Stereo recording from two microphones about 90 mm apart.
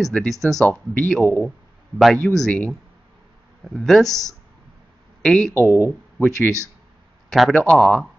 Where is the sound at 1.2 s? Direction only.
20° left (ahead or behind).